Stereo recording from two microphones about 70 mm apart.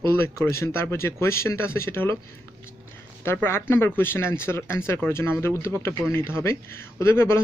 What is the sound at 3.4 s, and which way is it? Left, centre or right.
Speech, left.